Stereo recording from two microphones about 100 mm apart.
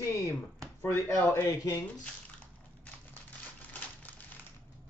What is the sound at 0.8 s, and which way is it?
Speech, 20° left (ahead or behind).